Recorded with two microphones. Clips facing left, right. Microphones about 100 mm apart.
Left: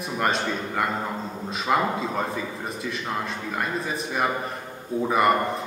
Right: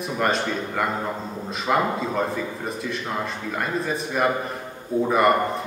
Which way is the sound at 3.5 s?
Centre (ahead or behind).